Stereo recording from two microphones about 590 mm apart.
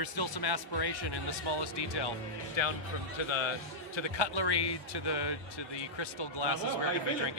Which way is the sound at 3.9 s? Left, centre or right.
Left.